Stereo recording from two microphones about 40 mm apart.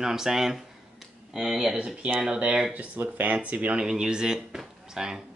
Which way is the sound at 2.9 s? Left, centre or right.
Right.